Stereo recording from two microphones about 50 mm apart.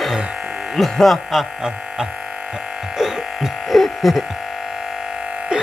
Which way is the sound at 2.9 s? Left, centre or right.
Centre.